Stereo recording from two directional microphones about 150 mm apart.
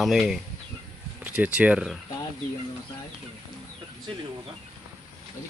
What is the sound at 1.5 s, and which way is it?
Speech, 5° right (ahead or behind).